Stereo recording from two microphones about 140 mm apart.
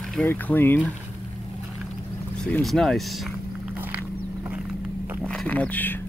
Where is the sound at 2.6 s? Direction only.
Centre (ahead or behind).